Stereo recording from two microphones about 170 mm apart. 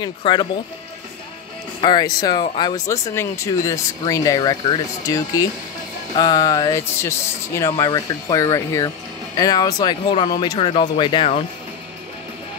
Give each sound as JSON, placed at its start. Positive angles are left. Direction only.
{"t": 0.0, "sound": "speech", "side_deg": 30}
{"t": 1.8, "sound": "speech", "side_deg": 25}